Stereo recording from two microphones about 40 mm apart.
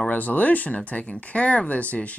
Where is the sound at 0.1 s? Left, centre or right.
Left.